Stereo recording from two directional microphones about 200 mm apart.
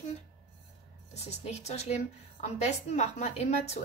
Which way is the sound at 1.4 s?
35° left (ahead or behind).